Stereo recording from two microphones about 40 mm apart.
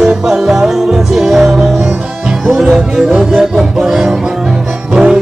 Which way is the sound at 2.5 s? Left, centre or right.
Centre.